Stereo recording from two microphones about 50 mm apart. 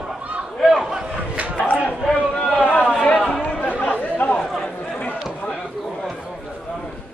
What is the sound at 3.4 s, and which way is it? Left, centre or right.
Chatter, left.